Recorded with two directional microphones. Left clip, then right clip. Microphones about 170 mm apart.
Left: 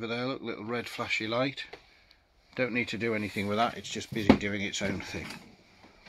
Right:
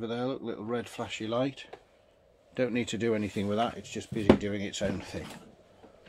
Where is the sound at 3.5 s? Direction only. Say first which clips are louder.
Left 3 dB; 5° right (ahead or behind).